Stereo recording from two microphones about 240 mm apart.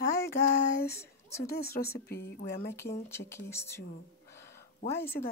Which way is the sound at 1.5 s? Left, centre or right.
Left.